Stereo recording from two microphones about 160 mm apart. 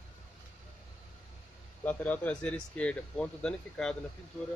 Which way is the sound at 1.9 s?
10° left (ahead or behind).